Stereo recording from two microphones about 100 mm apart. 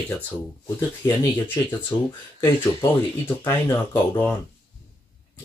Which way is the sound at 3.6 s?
20° left (ahead or behind).